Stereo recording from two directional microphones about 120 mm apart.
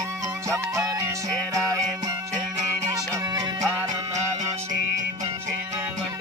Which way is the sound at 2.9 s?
30° right (ahead or behind).